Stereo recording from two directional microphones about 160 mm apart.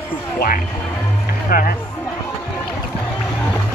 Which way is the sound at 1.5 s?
65° left (ahead or behind).